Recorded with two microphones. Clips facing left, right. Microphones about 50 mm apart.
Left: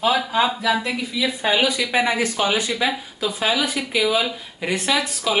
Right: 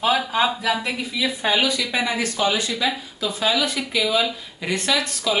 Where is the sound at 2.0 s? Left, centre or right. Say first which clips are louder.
Left 3 dB; left.